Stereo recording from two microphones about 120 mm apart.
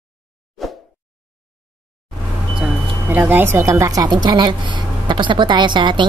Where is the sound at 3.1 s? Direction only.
15° right (ahead or behind).